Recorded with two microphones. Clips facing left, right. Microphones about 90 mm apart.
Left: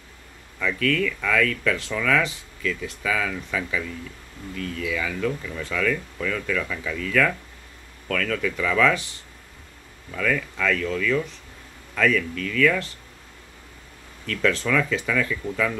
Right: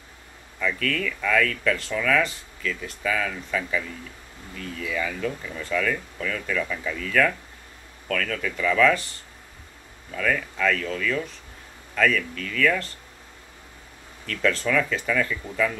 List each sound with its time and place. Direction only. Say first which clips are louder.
0.7 s speech: left 3 dB; 5° right (ahead or behind)
10.1 s speech: even; 5° right (ahead or behind)
14.2 s speech: left 1 dB; centre (ahead or behind)